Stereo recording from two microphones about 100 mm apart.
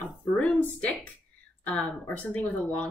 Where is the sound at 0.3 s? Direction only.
Centre (ahead or behind).